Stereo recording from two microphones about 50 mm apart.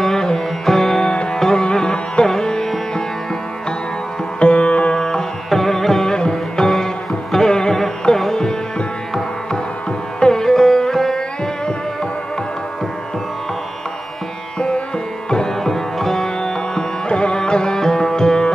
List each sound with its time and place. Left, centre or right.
0.0 s music: centre
1.1 s music: left
1.4 s sitar: centre
4.4 s music: left
5.0 s music: centre
10.2 s sitar: centre
15.2 s music: centre